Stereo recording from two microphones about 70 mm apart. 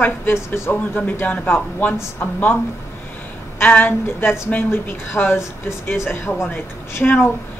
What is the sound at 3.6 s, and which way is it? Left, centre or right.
Speech, left.